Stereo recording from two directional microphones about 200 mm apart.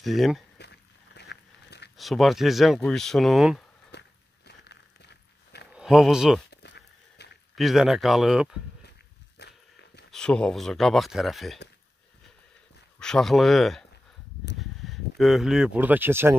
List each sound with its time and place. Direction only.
0.0 s speech: centre (ahead or behind)
0.6 s biting: 55° left (ahead or behind)
2.0 s speech: centre (ahead or behind)
3.9 s walk: 55° left (ahead or behind)
4.5 s a sound: 55° left (ahead or behind)
5.7 s speech: 5° right (ahead or behind)
6.5 s a sound: 55° left (ahead or behind)
7.5 s speech: centre (ahead or behind)
9.4 s a sound: 55° left (ahead or behind)
10.1 s speech: 5° left (ahead or behind)
13.0 s speech: centre (ahead or behind)